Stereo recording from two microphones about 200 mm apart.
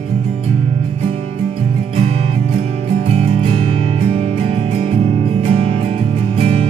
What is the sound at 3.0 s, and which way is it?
Music, 30° right (ahead or behind).